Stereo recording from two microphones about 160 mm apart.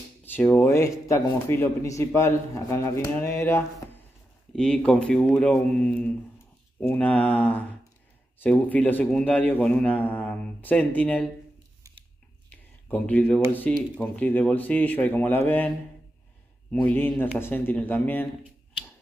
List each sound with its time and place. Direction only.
0.2 s a man's voice: 10° left (ahead or behind)
4.6 s a man's voice: 5° left (ahead or behind)
12.4 s a sound: 10° left (ahead or behind)
13.5 s a man's voice: 10° left (ahead or behind)
16.7 s a man's voice: 10° left (ahead or behind)